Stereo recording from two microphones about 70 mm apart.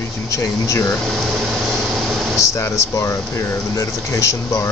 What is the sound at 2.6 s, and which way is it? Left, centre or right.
Speech, left.